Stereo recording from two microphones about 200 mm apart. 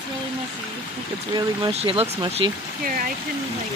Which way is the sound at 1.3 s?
30° right (ahead or behind).